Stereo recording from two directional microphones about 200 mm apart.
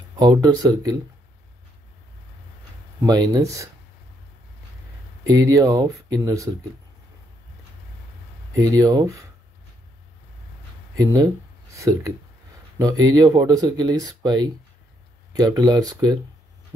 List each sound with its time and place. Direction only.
0.2 s speech: 20° right (ahead or behind)
3.0 s speech: 15° right (ahead or behind)
5.2 s speech: 15° right (ahead or behind)
8.5 s speech: 15° right (ahead or behind)
11.0 s speech: 15° right (ahead or behind)